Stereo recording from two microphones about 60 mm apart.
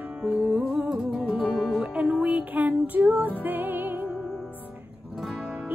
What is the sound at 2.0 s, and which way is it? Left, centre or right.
Music, centre.